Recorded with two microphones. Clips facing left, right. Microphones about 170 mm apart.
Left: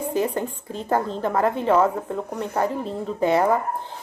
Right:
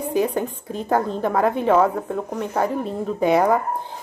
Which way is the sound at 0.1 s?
10° right (ahead or behind).